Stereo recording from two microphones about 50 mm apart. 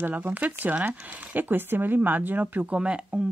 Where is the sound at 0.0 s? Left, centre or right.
Right.